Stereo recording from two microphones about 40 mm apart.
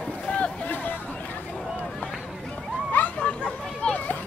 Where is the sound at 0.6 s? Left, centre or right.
Left.